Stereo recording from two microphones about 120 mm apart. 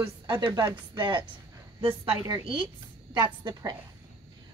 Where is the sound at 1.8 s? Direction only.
50° right (ahead or behind).